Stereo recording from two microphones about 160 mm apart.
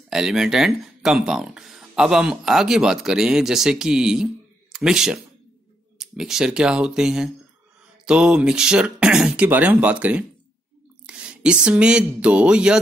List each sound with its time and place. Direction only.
0.1 s speech: centre (ahead or behind)